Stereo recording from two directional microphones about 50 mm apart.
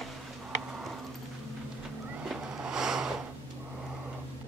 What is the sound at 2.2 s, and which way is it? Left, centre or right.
Vehicle, centre.